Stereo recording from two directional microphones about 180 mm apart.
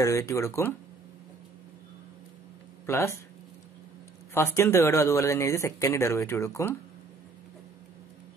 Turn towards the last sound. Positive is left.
turn(degrees=15)  # may be behind; listen again after turning